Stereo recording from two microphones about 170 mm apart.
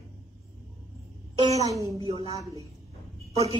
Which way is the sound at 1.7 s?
20° right (ahead or behind).